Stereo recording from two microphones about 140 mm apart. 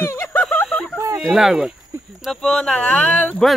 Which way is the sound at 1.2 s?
Centre (ahead or behind).